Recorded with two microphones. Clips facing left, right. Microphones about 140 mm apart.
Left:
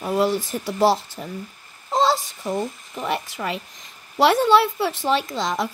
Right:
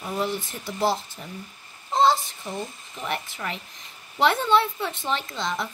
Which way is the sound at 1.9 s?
90° left.